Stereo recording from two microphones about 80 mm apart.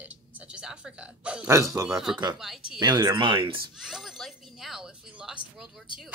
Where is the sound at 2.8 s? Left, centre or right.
Right.